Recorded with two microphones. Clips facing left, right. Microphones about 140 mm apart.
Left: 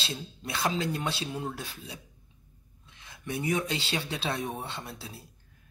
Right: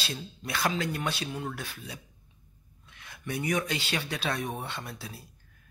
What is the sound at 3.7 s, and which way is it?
Speech, 25° left (ahead or behind).